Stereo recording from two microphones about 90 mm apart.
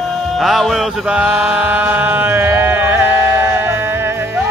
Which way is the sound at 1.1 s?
15° right (ahead or behind).